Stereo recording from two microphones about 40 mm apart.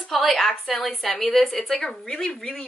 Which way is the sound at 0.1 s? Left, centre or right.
Centre.